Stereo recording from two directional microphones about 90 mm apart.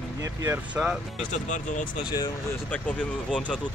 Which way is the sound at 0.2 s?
35° right (ahead or behind).